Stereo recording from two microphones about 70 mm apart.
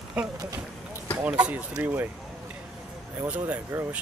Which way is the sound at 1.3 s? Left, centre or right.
Centre.